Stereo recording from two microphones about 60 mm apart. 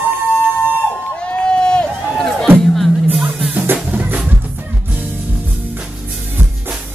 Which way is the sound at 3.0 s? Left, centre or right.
Right.